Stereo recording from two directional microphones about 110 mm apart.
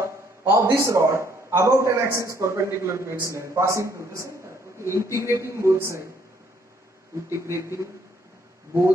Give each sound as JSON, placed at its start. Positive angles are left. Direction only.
{"t": 0.0, "sound": "a man's voice", "side_deg": -25}
{"t": 7.2, "sound": "a man's voice", "side_deg": -25}